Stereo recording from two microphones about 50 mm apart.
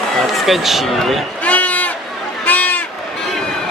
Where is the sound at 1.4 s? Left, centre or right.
Left.